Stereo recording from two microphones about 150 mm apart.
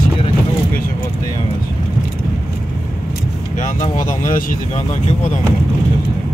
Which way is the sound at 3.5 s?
55° left (ahead or behind).